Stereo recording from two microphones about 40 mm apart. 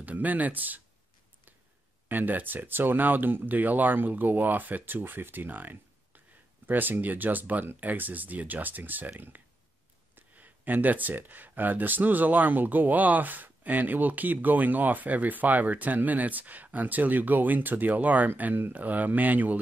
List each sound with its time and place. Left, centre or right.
0.0 s speech: right
2.0 s speech: right